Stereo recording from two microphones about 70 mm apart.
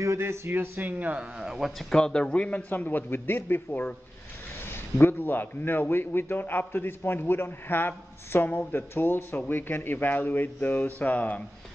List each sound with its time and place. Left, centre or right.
0.0 s speech: right
1.4 s a man's voice: centre; by 3.8 s left
4.9 s a man's voice: left